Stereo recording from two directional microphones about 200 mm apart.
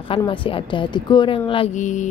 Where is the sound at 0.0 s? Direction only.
25° left (ahead or behind).